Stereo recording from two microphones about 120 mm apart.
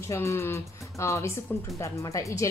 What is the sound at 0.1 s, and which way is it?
Speech, 25° left (ahead or behind).